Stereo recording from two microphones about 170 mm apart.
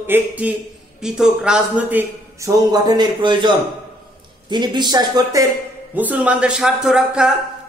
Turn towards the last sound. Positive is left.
turn(degrees=-5)  # may be behind; listen again after turning